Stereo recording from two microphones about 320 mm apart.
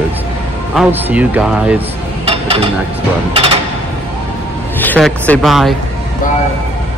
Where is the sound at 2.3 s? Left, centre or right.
Centre.